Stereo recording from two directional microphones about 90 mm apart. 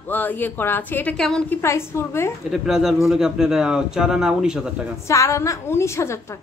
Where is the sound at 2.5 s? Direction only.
5° right (ahead or behind).